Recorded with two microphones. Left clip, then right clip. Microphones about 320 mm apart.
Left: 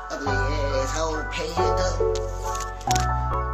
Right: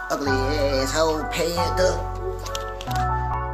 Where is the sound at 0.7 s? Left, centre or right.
Centre.